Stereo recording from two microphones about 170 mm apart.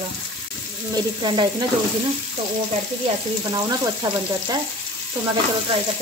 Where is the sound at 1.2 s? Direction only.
30° right (ahead or behind).